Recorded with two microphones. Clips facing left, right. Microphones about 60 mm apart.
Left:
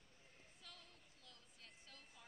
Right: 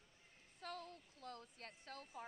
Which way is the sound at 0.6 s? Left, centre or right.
Right.